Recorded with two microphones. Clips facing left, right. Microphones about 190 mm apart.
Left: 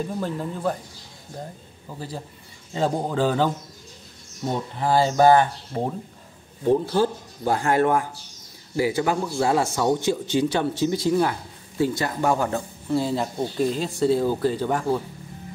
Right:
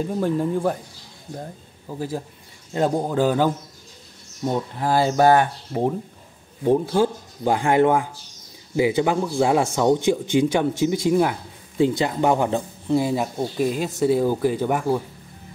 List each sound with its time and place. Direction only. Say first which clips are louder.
0.2 s speech: right 9 dB; 10° right (ahead or behind)
1.9 s speech: right 6 dB; 15° right (ahead or behind)
4.7 s speech: left 1 dB; 10° right (ahead or behind)